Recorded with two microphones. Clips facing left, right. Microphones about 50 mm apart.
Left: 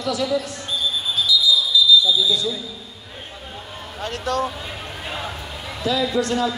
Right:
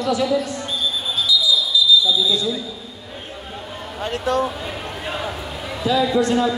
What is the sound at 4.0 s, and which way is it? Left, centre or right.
Speech, centre.